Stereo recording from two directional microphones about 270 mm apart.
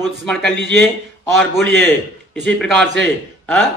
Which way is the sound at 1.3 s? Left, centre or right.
Centre.